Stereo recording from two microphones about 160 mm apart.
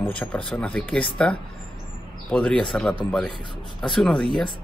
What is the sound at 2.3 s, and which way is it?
A man's voice, 5° left (ahead or behind).